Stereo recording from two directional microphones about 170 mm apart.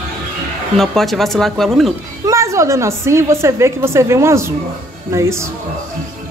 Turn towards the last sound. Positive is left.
turn(degrees=-15)  # may be behind; listen again after turning